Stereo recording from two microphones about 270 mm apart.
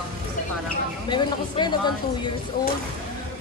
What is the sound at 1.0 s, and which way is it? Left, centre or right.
Speech, centre.